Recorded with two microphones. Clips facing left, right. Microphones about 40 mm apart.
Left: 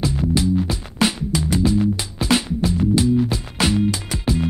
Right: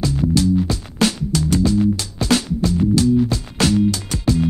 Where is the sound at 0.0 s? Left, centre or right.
Centre.